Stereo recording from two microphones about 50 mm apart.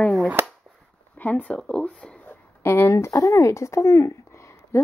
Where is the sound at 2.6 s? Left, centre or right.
Left.